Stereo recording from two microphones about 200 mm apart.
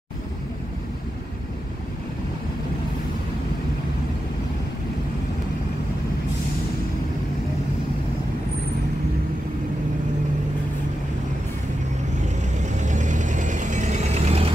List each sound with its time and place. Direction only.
12.6 s vehicle: 35° right (ahead or behind)